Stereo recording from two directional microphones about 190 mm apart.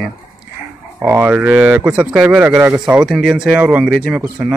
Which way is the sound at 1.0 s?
10° right (ahead or behind).